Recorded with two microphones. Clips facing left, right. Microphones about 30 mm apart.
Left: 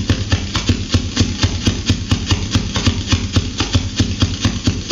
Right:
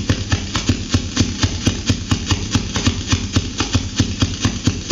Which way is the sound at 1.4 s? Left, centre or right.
Left.